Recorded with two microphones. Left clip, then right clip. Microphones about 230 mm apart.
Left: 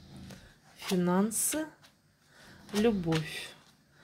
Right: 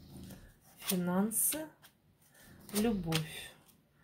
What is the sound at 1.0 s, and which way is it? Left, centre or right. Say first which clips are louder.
Speech: left 6 dB; left.